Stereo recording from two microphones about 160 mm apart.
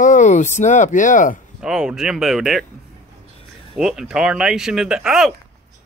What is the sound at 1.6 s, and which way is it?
Speech, 5° right (ahead or behind).